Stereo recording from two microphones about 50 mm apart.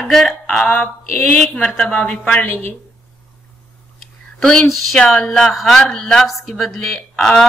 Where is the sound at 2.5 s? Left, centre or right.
Left.